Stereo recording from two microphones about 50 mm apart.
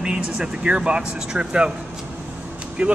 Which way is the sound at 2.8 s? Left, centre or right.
Right.